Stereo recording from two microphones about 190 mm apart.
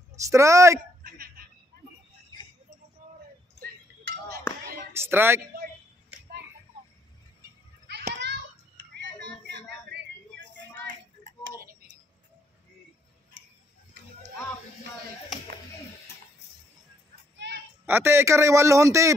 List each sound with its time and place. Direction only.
0.1 s a man's voice: 15° right (ahead or behind)
1.0 s a sound: 50° right (ahead or behind)
4.9 s a man's voice: 10° right (ahead or behind)
7.9 s children playing: 65° right (ahead or behind)
9.5 s a sound: 60° right (ahead or behind)
17.8 s a man's voice: 10° right (ahead or behind)